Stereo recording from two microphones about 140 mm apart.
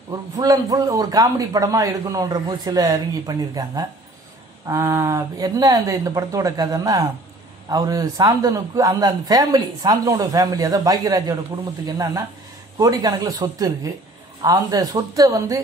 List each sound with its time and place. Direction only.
0.1 s a man's voice: 25° right (ahead or behind)